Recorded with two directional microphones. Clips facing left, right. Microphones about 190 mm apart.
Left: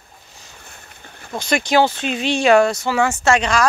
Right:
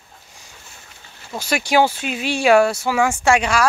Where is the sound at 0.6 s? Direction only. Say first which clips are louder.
Left 3 dB; 55° left (ahead or behind).